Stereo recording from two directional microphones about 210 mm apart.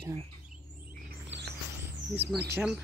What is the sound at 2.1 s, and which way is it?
Speech, 5° right (ahead or behind).